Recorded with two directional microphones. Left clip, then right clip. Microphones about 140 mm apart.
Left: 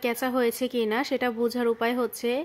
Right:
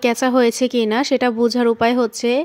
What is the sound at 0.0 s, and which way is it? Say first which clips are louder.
Speech: right 10 dB; 40° right (ahead or behind).